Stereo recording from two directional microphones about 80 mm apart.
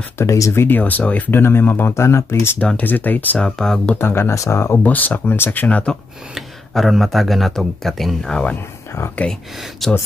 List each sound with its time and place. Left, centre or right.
0.2 s speech: left
0.7 s speech: left
2.6 s speech: centre
3.3 s speech: centre
4.0 s speech: left
4.8 s speech: left
6.3 s speech: centre